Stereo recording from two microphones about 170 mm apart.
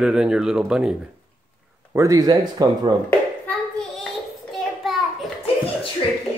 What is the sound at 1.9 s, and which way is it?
Speech, 20° right (ahead or behind).